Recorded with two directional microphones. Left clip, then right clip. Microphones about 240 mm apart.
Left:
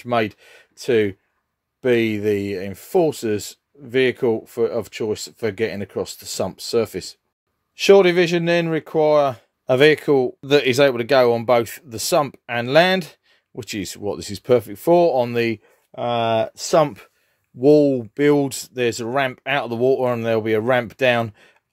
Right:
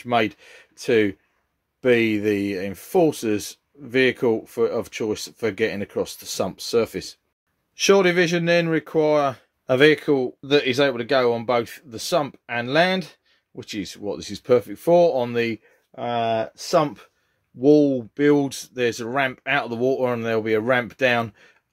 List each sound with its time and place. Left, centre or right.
0.0 s speech: left